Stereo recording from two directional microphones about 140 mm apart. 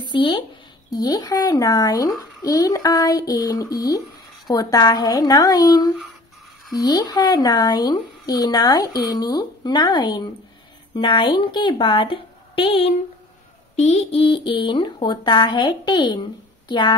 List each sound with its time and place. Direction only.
0.1 s speech: 35° left (ahead or behind)
13.7 s speech: 50° left (ahead or behind); by 16.9 s 35° left (ahead or behind)